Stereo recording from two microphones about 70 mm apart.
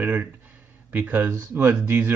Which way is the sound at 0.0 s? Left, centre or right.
Right.